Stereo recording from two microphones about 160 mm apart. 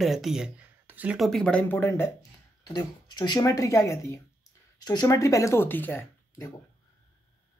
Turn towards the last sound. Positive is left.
turn(degrees=10)  # may be behind; listen again after turning